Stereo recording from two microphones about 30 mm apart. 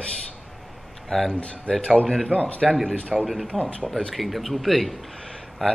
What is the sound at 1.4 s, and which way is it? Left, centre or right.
Speech, left.